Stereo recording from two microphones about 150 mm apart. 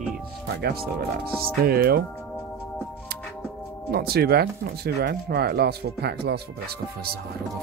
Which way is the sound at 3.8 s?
90° right.